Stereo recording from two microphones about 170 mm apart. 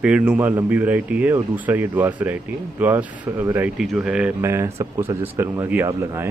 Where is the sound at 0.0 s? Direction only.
5° right (ahead or behind).